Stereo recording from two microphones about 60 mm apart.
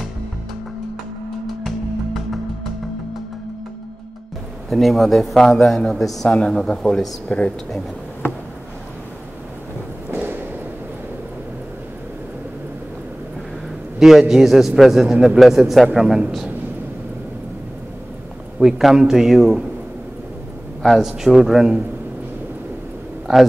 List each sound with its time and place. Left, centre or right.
4.6 s a man's voice: centre
6.2 s speech: centre
7.2 s speech: left
10.1 s whip: right
13.9 s a man's voice: centre
18.6 s a man's voice: centre
20.8 s a man's voice: centre